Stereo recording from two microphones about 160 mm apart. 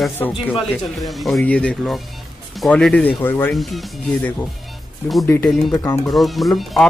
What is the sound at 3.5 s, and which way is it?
Speech, centre (ahead or behind).